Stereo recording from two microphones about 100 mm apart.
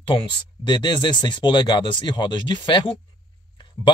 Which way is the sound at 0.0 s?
55° left (ahead or behind).